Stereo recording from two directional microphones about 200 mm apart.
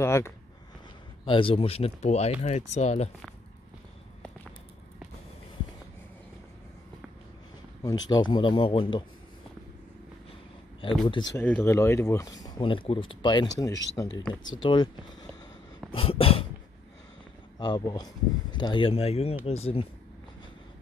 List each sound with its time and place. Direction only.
0.0 s speech: 15° left (ahead or behind)
1.2 s speech: 25° left (ahead or behind)
8.1 s speech: 20° left (ahead or behind)
11.3 s speech: 10° left (ahead or behind)
15.9 s speech: 30° left (ahead or behind)
17.6 s speech: 20° left (ahead or behind)